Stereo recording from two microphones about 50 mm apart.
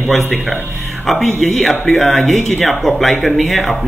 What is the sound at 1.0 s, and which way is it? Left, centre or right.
Speech, centre.